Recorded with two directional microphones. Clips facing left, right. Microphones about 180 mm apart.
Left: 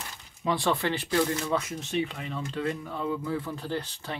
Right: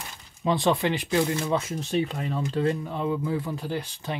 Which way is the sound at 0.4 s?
20° right (ahead or behind).